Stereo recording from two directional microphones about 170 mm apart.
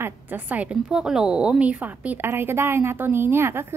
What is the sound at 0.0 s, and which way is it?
A woman's voice, 10° right (ahead or behind).